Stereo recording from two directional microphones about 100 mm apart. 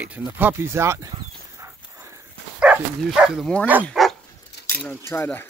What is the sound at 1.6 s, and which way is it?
Dog, 30° right (ahead or behind).